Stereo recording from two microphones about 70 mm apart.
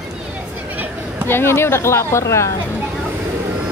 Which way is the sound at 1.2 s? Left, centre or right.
Left.